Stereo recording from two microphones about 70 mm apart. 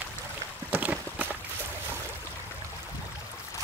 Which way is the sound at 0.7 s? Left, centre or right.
Right.